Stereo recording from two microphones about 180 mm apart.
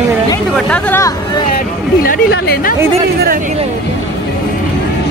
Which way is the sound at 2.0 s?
50° left (ahead or behind).